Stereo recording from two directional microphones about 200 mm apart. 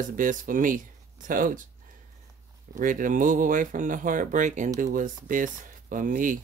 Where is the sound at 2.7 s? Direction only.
40° right (ahead or behind).